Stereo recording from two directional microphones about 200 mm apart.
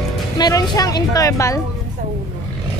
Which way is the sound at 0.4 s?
20° left (ahead or behind).